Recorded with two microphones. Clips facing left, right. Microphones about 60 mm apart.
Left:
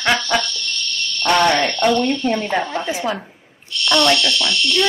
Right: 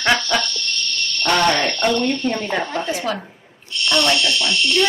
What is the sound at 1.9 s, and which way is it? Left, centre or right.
Speech, right.